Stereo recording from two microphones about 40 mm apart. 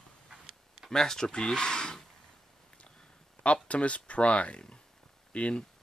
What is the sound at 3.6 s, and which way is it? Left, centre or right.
Speech, left.